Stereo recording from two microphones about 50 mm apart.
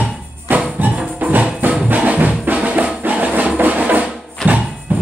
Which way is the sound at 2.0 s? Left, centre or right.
Right.